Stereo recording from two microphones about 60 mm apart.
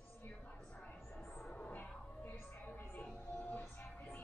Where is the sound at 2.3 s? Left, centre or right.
Left.